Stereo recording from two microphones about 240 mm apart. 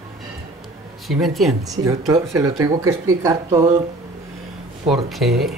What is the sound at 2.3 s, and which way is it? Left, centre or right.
Speech, centre.